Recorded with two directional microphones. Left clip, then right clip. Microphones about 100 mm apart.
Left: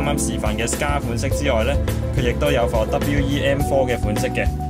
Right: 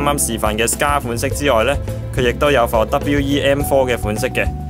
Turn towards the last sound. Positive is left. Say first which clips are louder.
# right 3 dB
turn(degrees=-30)  # may be behind; listen again after turning